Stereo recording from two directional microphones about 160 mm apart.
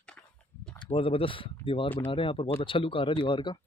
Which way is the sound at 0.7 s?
35° left (ahead or behind).